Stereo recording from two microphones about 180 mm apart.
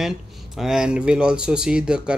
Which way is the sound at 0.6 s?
5° right (ahead or behind).